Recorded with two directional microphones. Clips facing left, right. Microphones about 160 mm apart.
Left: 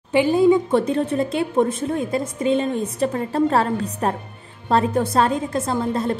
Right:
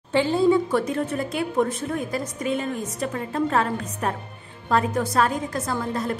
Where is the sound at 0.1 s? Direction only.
15° left (ahead or behind).